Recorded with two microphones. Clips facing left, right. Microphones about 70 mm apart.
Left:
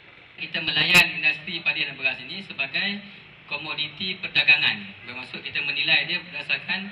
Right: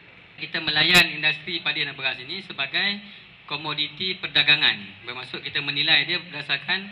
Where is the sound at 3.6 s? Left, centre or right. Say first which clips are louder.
Right 4 dB; right.